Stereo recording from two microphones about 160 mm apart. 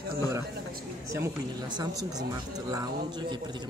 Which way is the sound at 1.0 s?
20° right (ahead or behind).